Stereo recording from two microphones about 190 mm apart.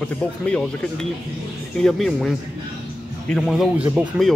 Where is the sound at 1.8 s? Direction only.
5° left (ahead or behind).